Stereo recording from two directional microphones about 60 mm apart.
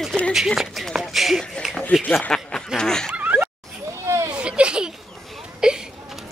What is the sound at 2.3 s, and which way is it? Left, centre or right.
Speech, centre.